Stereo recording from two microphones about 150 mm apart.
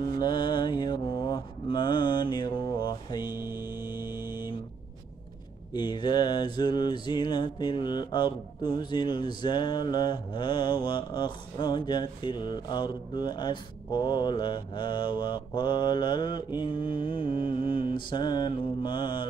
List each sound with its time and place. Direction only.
0.0 s mantra: 30° left (ahead or behind)
3.3 s mantra: 15° right (ahead or behind)
5.7 s mantra: 30° left (ahead or behind)